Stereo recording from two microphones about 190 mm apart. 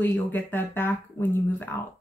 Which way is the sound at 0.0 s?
10° left (ahead or behind).